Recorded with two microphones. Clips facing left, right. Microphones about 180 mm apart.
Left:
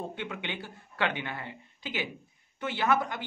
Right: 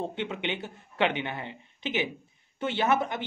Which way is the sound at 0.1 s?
25° right (ahead or behind).